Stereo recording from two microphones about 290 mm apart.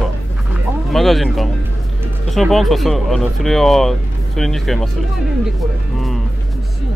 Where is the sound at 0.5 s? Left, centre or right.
Centre.